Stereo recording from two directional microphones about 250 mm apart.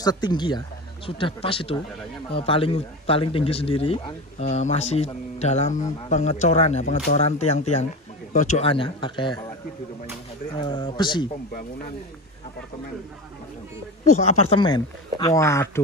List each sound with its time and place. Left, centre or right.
0.0 s speech: centre
10.6 s speech: centre
14.0 s speech: left; by 15.8 s centre